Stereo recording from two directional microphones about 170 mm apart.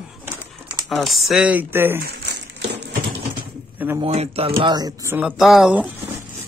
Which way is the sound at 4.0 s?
35° right (ahead or behind).